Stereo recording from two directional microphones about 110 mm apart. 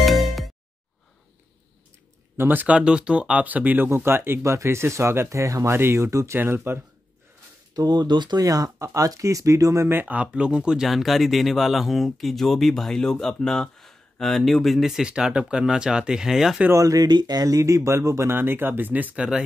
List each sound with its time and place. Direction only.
0.0 s music: centre (ahead or behind)
2.3 s speech: 20° right (ahead or behind)
7.7 s speech: 35° right (ahead or behind)
9.8 s speech: 15° right (ahead or behind)
16.7 s speech: 30° right (ahead or behind); by 19.4 s 10° right (ahead or behind)